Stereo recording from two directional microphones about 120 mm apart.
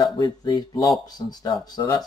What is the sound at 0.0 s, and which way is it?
Speech, 35° left (ahead or behind).